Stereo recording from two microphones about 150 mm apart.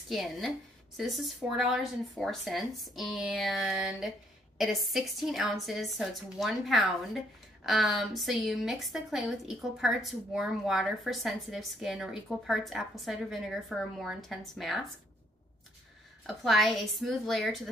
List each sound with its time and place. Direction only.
0.1 s a woman's voice: centre (ahead or behind)
16.3 s a woman's voice: centre (ahead or behind)